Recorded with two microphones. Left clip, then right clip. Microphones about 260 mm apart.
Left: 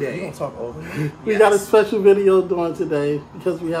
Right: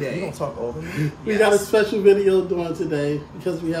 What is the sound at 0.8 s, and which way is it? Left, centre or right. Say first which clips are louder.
A man's voice: left 3 dB; centre.